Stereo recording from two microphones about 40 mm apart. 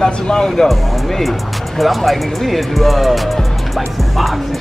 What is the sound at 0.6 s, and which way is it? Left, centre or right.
Speech, centre.